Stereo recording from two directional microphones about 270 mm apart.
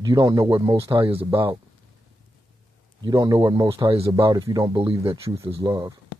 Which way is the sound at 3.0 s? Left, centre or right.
Centre.